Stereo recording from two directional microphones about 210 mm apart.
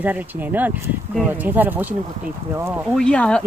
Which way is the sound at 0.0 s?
10° right (ahead or behind).